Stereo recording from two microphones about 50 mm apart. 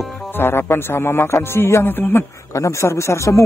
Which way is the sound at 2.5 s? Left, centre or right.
Left.